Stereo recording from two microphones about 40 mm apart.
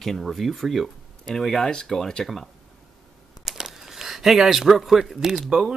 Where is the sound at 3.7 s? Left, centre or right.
Centre.